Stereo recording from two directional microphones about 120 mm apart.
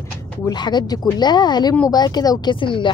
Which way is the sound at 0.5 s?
40° left (ahead or behind).